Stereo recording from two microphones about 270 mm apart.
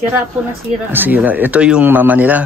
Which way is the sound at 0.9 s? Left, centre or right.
Centre.